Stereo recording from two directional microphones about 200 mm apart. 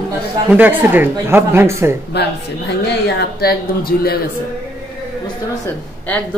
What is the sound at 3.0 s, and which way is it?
Speech, 55° left (ahead or behind).